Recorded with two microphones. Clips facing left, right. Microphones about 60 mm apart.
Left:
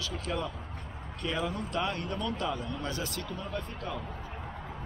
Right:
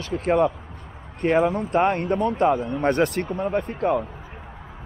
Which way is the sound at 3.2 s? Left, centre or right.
Right.